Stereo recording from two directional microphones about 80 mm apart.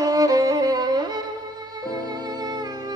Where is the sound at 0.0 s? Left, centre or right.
Right.